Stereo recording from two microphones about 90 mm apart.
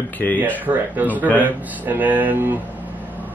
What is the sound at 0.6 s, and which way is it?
Speech, 20° right (ahead or behind).